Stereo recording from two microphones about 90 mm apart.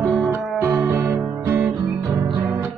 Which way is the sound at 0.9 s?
30° right (ahead or behind).